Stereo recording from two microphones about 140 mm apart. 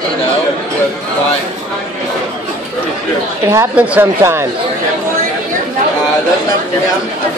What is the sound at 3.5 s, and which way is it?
Speech, 10° right (ahead or behind).